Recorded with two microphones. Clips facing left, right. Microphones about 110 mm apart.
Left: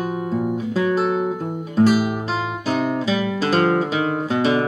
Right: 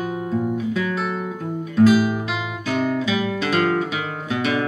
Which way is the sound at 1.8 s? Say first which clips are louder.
Right 1 dB; 35° left (ahead or behind).